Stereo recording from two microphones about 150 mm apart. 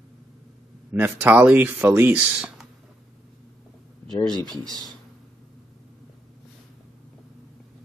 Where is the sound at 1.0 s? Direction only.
10° right (ahead or behind).